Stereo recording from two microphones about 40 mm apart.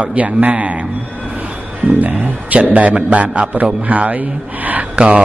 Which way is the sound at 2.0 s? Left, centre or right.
Right.